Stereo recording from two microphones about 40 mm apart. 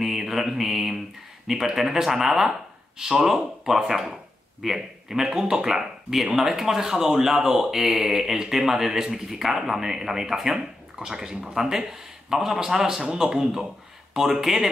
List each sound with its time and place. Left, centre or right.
0.0 s mantra: centre
1.5 s a man's voice: centre
5.3 s speech: right